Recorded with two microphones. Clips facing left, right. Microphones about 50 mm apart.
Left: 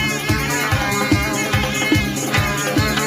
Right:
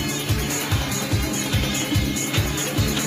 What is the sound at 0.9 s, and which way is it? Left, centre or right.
Music, left.